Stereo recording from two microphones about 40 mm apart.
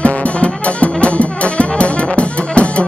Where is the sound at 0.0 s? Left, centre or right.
Left.